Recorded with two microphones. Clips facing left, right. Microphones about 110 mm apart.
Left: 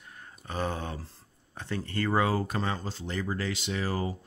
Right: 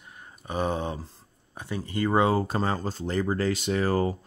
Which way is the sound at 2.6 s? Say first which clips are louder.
Right 5 dB; 40° right (ahead or behind).